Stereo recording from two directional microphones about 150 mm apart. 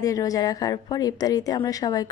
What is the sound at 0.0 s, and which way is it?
A woman's voice, 20° left (ahead or behind).